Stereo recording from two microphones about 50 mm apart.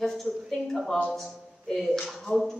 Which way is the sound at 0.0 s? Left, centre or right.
Centre.